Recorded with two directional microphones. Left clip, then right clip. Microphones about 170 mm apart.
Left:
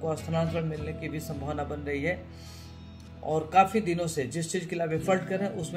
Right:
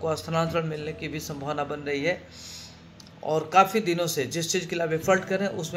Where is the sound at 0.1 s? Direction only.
10° left (ahead or behind).